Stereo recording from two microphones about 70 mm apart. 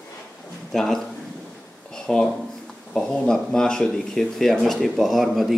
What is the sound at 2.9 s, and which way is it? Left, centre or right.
Speech, centre.